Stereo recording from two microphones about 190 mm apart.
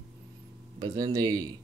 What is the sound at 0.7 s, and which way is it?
Speech, 20° right (ahead or behind).